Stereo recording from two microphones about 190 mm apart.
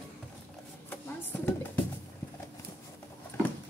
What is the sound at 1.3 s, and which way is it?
Speech, 10° left (ahead or behind).